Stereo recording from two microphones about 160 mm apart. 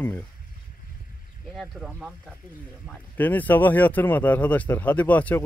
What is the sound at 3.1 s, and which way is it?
Speech, 10° left (ahead or behind).